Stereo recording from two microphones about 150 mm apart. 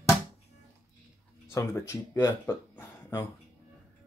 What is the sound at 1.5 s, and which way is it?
Speech, 15° left (ahead or behind).